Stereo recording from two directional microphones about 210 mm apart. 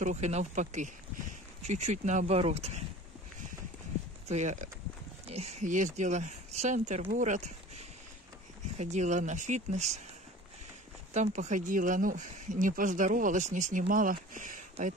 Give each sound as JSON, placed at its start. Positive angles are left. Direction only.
{"t": 0.0, "sound": "speech", "side_deg": -35}
{"t": 4.3, "sound": "speech", "side_deg": -35}
{"t": 8.7, "sound": "speech", "side_deg": -35}
{"t": 11.1, "sound": "speech", "side_deg": -35}